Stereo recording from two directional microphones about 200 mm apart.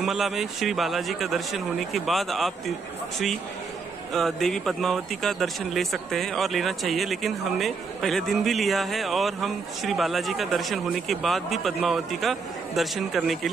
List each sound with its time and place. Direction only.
0.0 s speech: centre (ahead or behind)
4.1 s speech: centre (ahead or behind)